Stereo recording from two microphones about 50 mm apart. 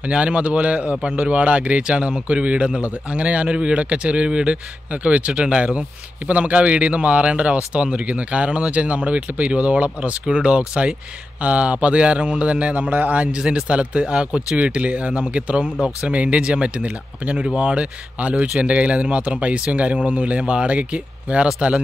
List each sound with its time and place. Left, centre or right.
0.0 s speech: right